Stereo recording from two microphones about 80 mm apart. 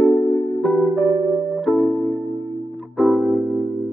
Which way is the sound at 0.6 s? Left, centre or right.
Centre.